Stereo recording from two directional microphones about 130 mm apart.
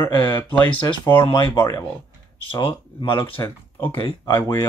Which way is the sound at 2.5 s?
40° left (ahead or behind).